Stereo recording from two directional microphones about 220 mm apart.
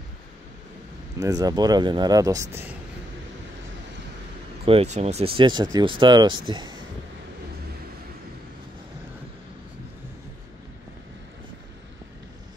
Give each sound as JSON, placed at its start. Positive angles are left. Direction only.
{"t": 1.2, "sound": "speech", "side_deg": -15}
{"t": 4.6, "sound": "speech", "side_deg": -30}